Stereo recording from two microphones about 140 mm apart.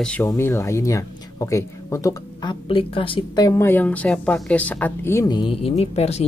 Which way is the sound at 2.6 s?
40° left (ahead or behind).